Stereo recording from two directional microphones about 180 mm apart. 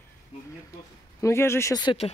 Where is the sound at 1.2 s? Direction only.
15° left (ahead or behind).